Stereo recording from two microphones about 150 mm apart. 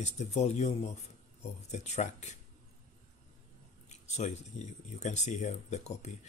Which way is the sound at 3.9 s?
50° left (ahead or behind).